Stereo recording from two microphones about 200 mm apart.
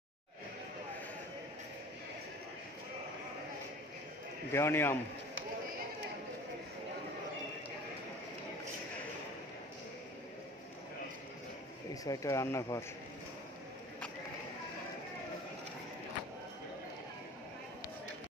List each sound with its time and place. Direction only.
4.5 s speech: 10° left (ahead or behind)
11.9 s speech: 15° left (ahead or behind)